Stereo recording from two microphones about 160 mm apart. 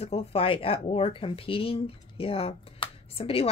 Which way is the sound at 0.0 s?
40° left (ahead or behind).